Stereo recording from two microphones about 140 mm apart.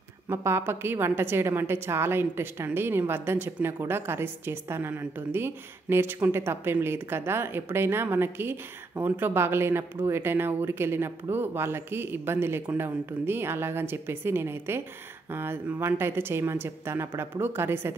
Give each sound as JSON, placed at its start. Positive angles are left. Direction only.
{"t": 0.3, "sound": "a woman's voice", "side_deg": -20}